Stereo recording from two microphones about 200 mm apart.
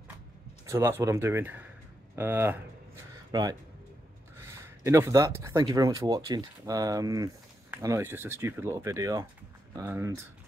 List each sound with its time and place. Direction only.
0.7 s speech: 15° right (ahead or behind)